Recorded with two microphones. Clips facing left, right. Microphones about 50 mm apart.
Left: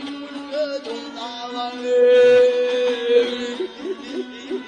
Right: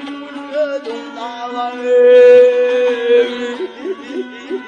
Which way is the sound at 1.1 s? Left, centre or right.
Right.